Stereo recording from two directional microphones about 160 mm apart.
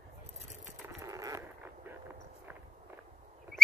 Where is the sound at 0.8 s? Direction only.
20° right (ahead or behind).